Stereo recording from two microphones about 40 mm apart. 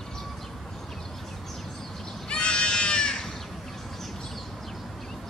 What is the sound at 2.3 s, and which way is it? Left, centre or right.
Goat, left.